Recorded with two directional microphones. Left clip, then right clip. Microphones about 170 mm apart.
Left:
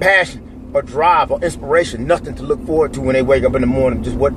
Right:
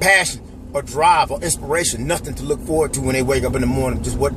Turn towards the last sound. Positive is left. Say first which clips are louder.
# left 5 dB
turn(degrees=-25)  # may be behind; listen again after turning